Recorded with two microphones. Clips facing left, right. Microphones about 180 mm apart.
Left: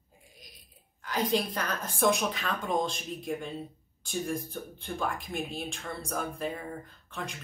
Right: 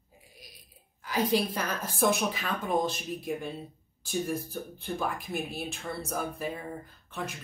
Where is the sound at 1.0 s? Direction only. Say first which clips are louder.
Right 2 dB; 10° right (ahead or behind).